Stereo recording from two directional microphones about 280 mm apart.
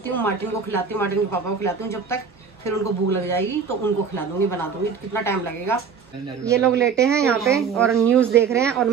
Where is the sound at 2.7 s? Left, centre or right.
Right.